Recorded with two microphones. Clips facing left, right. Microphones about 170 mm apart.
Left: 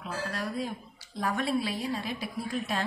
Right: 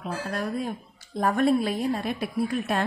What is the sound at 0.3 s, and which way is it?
A woman's voice, 50° right (ahead or behind).